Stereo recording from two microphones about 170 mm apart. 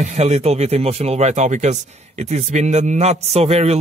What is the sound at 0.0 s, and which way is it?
Speech, 45° right (ahead or behind).